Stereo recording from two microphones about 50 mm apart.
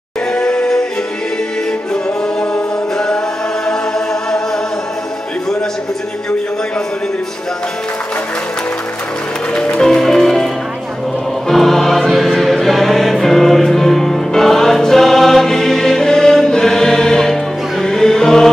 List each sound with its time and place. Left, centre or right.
0.3 s music: centre
2.5 s music: centre
9.5 s music: centre
9.8 s music: centre